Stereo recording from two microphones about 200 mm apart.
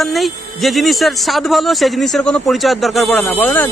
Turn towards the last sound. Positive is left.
turn(degrees=10)  # may be behind; listen again after turning